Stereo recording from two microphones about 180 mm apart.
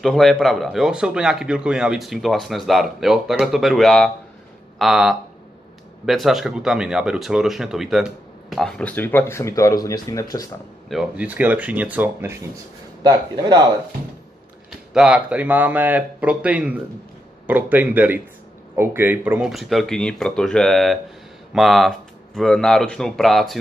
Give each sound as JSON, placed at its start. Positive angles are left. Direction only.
{"t": 0.0, "sound": "speech", "side_deg": 0}
{"t": 10.9, "sound": "speech", "side_deg": -5}
{"t": 14.9, "sound": "speech", "side_deg": -5}